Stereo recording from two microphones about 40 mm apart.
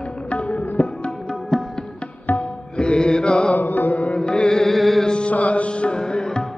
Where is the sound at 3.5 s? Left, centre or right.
Left.